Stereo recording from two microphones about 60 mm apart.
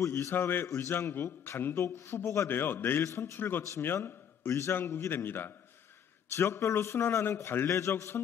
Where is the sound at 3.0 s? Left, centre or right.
Left.